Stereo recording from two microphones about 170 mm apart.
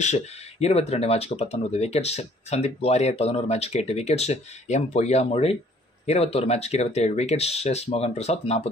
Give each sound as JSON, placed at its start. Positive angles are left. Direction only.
{"t": 0.0, "sound": "speech", "side_deg": 40}